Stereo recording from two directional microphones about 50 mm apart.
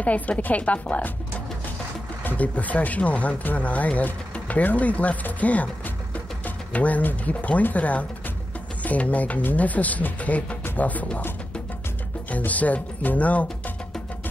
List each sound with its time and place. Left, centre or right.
0.0 s speech: left
2.2 s speech: left
12.3 s speech: left